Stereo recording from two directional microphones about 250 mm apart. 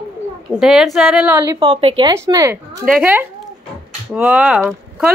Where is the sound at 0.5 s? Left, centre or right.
Centre.